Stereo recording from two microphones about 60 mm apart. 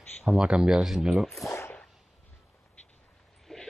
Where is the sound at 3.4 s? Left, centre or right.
Centre.